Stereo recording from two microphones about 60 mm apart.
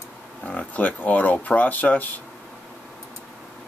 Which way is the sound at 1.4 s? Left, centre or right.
Left.